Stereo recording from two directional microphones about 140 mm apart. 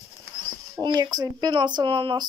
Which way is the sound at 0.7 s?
30° right (ahead or behind).